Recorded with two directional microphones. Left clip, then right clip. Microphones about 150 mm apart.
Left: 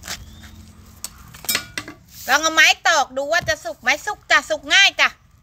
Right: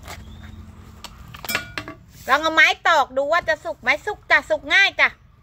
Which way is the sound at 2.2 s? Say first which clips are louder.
Left 1 dB; 25° right (ahead or behind).